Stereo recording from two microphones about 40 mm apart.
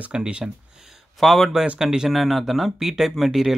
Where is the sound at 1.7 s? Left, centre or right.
Centre.